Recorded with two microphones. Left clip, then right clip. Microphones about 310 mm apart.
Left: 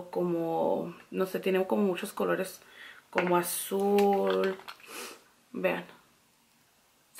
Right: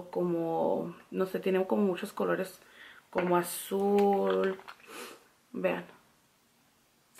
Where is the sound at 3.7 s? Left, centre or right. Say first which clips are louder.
Left 1 dB; right.